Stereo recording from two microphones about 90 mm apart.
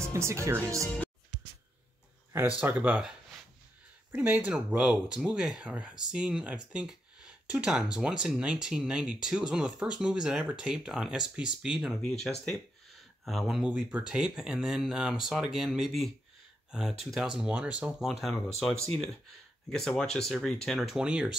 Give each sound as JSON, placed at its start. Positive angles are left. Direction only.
{"t": 0.1, "sound": "speech", "side_deg": -30}
{"t": 2.6, "sound": "speech", "side_deg": -15}
{"t": 4.1, "sound": "speech", "side_deg": -20}
{"t": 12.0, "sound": "speech", "side_deg": 5}
{"t": 13.7, "sound": "speech", "side_deg": -10}
{"t": 17.5, "sound": "speech", "side_deg": -15}
{"t": 17.9, "sound": "speech", "side_deg": 0}
{"t": 21.0, "sound": "speech", "side_deg": -10}